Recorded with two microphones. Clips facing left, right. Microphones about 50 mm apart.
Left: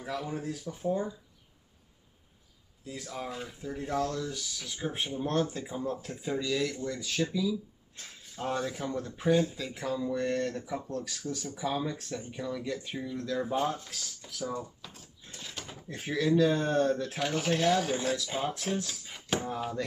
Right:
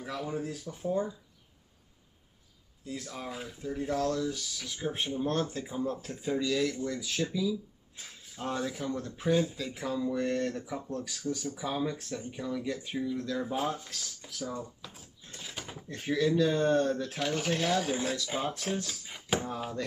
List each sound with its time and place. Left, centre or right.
0.0 s speech: centre
2.8 s speech: centre
14.4 s speech: centre
15.2 s mechanisms: centre
15.9 s speech: centre